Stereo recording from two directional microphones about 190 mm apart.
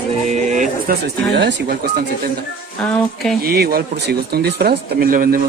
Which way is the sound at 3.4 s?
55° right (ahead or behind).